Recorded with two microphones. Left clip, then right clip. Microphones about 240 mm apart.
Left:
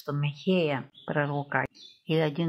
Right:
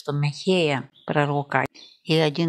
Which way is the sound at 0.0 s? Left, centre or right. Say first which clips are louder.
Right 6 dB; right.